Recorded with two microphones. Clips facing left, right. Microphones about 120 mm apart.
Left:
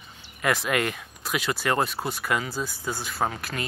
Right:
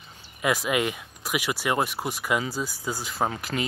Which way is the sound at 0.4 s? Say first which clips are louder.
Even; 10° right (ahead or behind).